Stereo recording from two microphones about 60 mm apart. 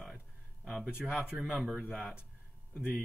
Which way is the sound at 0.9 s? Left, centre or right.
Centre.